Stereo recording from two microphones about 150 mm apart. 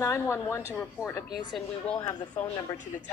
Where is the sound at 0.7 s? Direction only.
10° left (ahead or behind).